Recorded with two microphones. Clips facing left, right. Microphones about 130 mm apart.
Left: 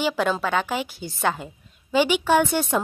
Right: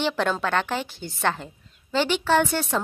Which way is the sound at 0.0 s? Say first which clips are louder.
Left 1 dB; 5° left (ahead or behind).